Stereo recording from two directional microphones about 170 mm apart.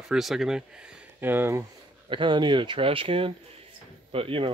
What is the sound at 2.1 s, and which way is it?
Speech, 30° right (ahead or behind).